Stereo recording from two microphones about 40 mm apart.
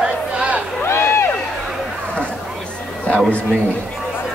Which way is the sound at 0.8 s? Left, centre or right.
Left.